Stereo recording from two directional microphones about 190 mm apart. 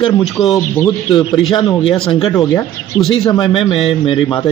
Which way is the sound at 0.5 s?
10° left (ahead or behind).